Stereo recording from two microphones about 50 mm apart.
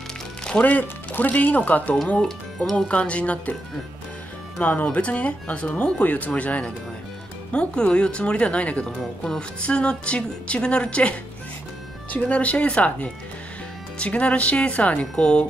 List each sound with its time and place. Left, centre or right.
0.5 s speech: left
2.1 s speech: centre
2.9 s speech: left
4.6 s speech: left